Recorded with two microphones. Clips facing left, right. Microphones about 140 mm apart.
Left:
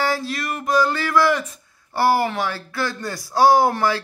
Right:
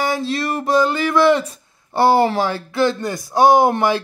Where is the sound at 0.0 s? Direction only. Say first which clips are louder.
Right 3 dB; 20° right (ahead or behind).